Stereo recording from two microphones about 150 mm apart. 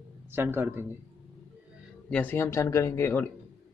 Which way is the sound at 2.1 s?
10° left (ahead or behind).